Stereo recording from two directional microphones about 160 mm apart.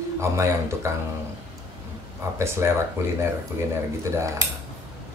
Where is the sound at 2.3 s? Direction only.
15° right (ahead or behind).